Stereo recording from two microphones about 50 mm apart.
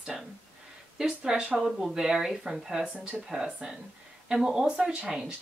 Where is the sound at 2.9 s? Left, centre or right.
Right.